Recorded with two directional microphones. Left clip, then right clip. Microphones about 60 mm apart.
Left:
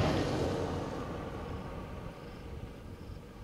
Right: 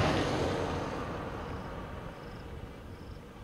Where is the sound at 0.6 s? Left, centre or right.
Centre.